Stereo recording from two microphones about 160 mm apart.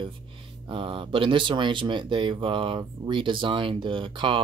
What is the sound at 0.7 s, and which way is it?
Speech, 35° right (ahead or behind).